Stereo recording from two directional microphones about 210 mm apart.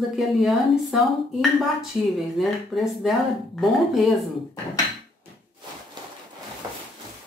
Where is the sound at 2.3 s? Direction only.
Centre (ahead or behind).